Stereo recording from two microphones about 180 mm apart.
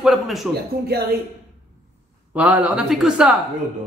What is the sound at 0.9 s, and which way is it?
Speech, 60° right (ahead or behind).